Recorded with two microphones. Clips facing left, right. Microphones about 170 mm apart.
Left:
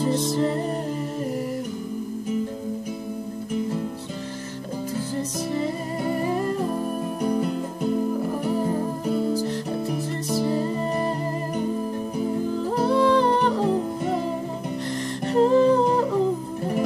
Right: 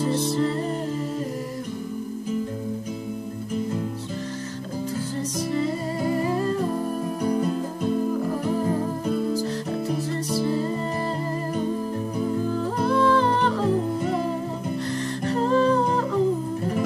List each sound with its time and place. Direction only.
6.3 s humming: 15° left (ahead or behind)
10.3 s music: 15° left (ahead or behind)
12.8 s humming: 15° left (ahead or behind)
15.2 s humming: 15° left (ahead or behind)